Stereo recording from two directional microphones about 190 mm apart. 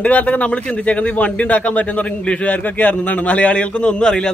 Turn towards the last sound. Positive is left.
turn(degrees=5)  # may be behind; listen again after turning